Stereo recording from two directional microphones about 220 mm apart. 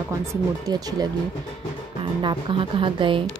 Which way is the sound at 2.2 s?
20° right (ahead or behind).